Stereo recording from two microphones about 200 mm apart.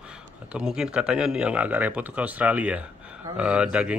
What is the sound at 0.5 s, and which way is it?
Speech, 5° right (ahead or behind).